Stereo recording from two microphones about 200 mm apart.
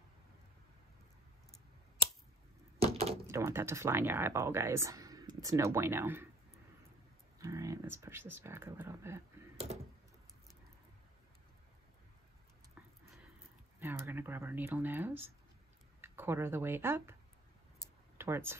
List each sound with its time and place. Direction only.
3.3 s speech: 15° right (ahead or behind)
7.3 s speech: 15° right (ahead or behind)
13.7 s speech: 10° right (ahead or behind)
18.1 s speech: 10° right (ahead or behind)